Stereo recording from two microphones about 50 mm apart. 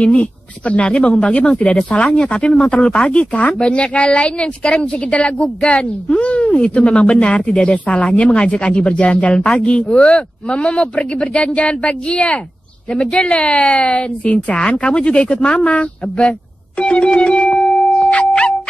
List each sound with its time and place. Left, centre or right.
0.0 s a woman's voice: left
16.3 s music: left